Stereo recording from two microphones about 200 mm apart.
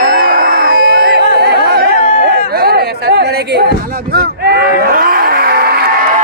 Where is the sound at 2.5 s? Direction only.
50° right (ahead or behind).